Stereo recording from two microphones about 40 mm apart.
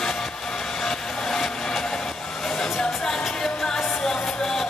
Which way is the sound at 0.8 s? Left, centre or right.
Centre.